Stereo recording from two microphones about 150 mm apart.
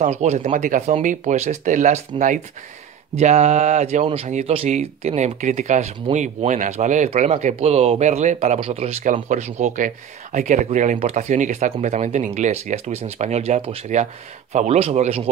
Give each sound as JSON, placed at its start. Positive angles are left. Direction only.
{"t": 0.0, "sound": "speech", "side_deg": -50}
{"t": 9.0, "sound": "speech", "side_deg": -55}